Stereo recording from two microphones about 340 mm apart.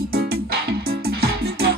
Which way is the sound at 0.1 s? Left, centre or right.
Right.